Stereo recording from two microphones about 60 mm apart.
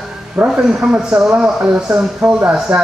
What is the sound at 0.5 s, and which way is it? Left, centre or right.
Speech, centre.